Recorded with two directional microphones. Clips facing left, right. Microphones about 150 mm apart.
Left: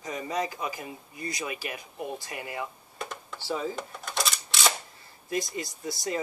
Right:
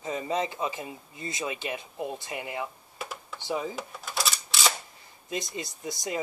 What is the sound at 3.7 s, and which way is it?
Cash register, centre (ahead or behind).